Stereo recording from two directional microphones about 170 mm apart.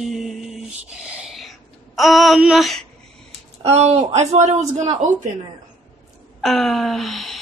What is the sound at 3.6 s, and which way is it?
Speech, 40° right (ahead or behind).